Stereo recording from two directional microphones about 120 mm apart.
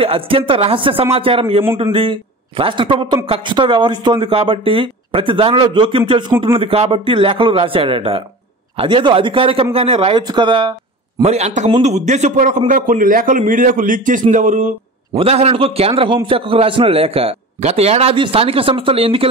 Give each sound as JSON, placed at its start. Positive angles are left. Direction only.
{"t": 0.0, "sound": "a man's voice", "side_deg": -50}
{"t": 11.2, "sound": "a man's voice", "side_deg": -65}
{"t": 15.1, "sound": "a man's voice", "side_deg": -55}